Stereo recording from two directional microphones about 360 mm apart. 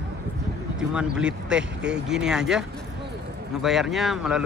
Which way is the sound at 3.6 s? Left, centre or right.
Centre.